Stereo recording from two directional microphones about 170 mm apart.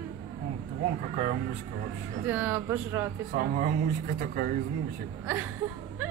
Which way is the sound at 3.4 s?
55° right (ahead or behind).